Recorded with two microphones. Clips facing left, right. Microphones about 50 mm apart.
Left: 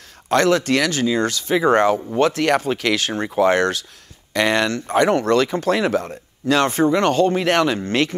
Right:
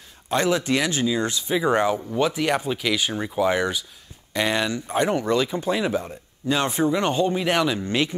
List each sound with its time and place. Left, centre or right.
0.3 s speech: left
6.7 s speech: left